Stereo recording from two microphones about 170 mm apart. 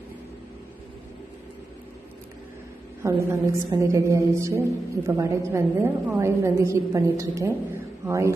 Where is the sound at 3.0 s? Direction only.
15° right (ahead or behind).